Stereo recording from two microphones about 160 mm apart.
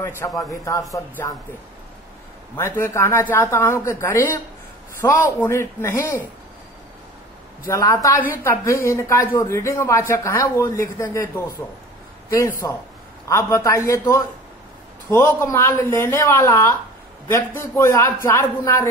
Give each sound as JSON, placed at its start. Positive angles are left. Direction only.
{"t": 0.5, "sound": "speech", "side_deg": 20}
{"t": 2.5, "sound": "speech", "side_deg": 15}
{"t": 7.6, "sound": "speech", "side_deg": 20}